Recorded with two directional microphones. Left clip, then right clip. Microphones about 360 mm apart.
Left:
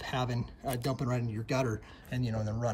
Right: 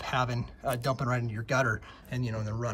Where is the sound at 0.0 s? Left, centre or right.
Centre.